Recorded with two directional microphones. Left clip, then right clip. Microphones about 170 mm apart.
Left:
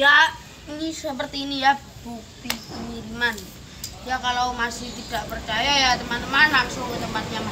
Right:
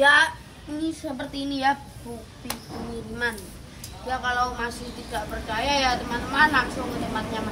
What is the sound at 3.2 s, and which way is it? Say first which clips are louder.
Speech: left 5 dB; centre (ahead or behind).